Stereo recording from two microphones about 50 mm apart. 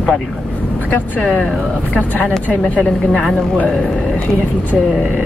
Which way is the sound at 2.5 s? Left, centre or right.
Left.